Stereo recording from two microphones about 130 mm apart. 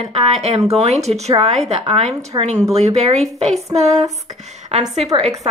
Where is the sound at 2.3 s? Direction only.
35° right (ahead or behind).